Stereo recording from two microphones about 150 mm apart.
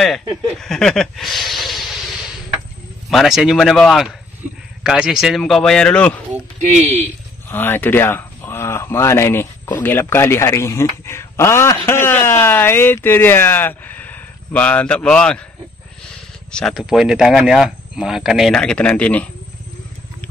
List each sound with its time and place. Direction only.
0.6 s a sound: 5° left (ahead or behind)
3.1 s speech: centre (ahead or behind)
7.4 s a man's voice: 15° left (ahead or behind)
16.5 s speech: centre (ahead or behind)